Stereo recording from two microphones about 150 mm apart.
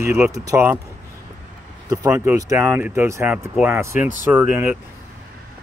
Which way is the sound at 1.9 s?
20° right (ahead or behind).